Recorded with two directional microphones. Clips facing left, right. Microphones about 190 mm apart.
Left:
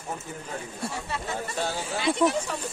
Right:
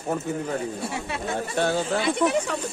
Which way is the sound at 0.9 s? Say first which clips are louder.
Right 4 dB; 65° right (ahead or behind).